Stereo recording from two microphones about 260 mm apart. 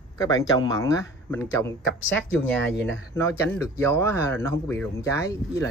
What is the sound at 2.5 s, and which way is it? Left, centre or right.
Speech, left.